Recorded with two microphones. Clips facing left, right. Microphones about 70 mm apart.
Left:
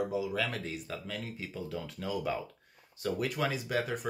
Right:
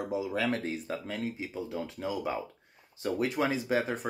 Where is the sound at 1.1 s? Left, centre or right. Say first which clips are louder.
Right 5 dB; right.